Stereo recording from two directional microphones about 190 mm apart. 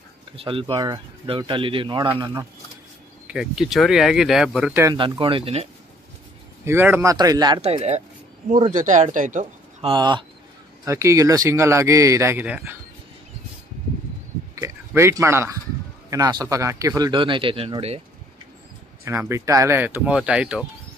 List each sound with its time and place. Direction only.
0.4 s speech: 30° right (ahead or behind)
3.3 s speech: 5° right (ahead or behind)
4.8 s speech: 20° right (ahead or behind)
6.6 s speech: 15° right (ahead or behind)
7.6 s speech: 35° right (ahead or behind); by 12.7 s 10° right (ahead or behind)
14.5 s a sound: 15° right (ahead or behind)
16.1 s speech: 20° right (ahead or behind)
19.0 s speech: 15° right (ahead or behind)